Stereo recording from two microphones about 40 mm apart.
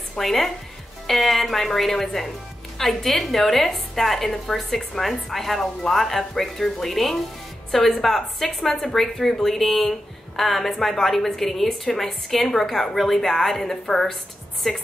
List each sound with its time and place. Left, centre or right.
0.2 s a woman's voice: centre